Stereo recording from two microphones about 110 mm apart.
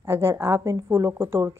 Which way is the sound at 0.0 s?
25° right (ahead or behind).